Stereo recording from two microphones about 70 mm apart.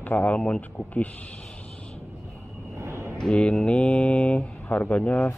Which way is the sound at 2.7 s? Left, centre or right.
Right.